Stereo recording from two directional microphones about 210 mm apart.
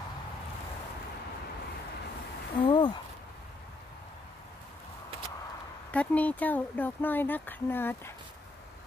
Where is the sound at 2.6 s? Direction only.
20° left (ahead or behind).